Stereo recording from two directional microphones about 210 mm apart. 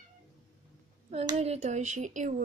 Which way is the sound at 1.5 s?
30° right (ahead or behind).